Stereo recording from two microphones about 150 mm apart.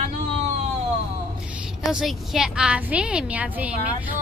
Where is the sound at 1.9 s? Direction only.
5° right (ahead or behind).